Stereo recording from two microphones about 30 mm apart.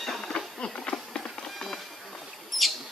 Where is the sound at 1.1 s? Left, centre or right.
Centre.